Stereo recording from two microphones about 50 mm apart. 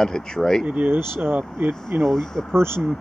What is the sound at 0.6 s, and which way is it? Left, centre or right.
Speech, right.